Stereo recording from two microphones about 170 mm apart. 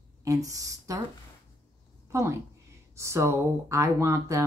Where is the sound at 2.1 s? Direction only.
15° right (ahead or behind).